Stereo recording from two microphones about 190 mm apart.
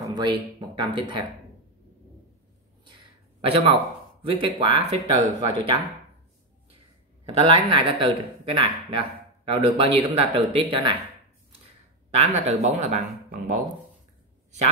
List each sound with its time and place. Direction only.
0.0 s speech: 25° right (ahead or behind)
3.3 s speech: 30° right (ahead or behind)
7.3 s speech: 30° right (ahead or behind)
12.1 s speech: 35° right (ahead or behind)